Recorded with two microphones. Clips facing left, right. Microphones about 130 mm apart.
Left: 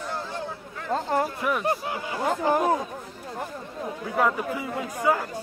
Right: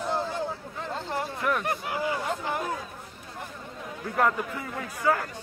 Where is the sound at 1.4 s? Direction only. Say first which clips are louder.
Left 1 dB; 5° left (ahead or behind).